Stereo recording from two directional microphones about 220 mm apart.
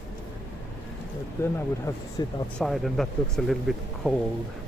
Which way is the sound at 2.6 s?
Centre (ahead or behind).